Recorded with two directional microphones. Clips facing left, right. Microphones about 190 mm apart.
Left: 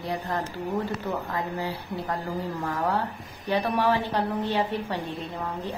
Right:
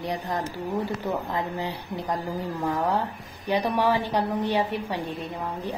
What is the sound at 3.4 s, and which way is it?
A woman's voice, 15° right (ahead or behind).